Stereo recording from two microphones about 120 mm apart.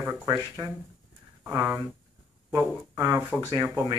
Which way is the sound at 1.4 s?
20° right (ahead or behind).